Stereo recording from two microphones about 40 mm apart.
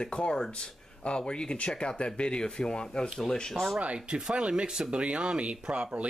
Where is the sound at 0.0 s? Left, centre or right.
Left.